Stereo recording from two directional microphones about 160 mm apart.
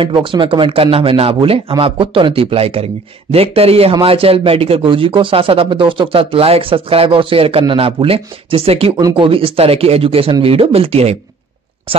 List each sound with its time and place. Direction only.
0.0 s speech: 30° right (ahead or behind)